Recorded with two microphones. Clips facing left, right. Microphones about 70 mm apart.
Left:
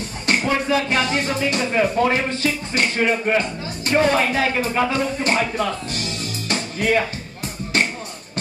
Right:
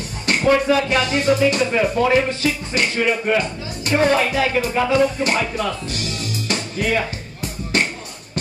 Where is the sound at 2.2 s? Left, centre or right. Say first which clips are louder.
Right 1 dB; left.